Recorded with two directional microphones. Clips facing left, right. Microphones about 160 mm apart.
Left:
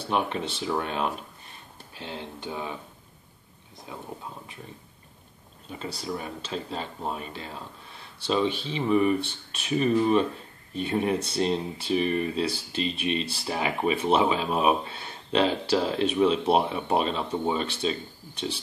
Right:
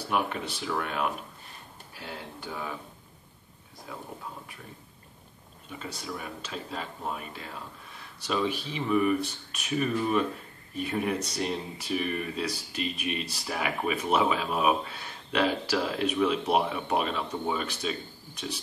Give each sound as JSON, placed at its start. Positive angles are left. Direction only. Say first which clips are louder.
{"t": 0.1, "sound": "speech", "louder": "left 2 dB", "side_deg": 25}
{"t": 3.9, "sound": "speech", "louder": "left 1 dB", "side_deg": 20}
{"t": 5.7, "sound": "speech", "louder": "left 4 dB", "side_deg": 30}